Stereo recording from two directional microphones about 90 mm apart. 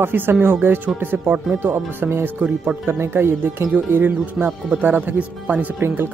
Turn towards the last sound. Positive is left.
turn(degrees=-25)  # may be behind; listen again after turning